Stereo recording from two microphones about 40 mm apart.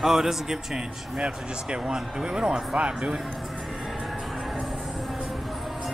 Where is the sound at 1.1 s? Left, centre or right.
Right.